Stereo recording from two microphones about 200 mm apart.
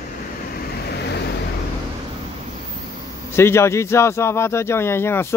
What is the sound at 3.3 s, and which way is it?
Speech, 15° left (ahead or behind).